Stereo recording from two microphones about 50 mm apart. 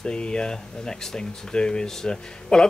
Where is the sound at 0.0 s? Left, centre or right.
Centre.